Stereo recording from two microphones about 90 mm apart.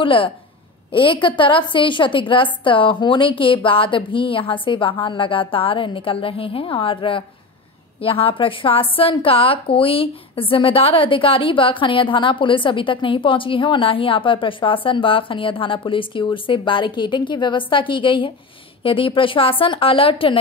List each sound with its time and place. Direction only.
0.0 s a woman's voice: 75° left (ahead or behind)
8.0 s a woman's voice: 90° left; by 18.3 s 70° left (ahead or behind)
18.8 s a woman's voice: 80° left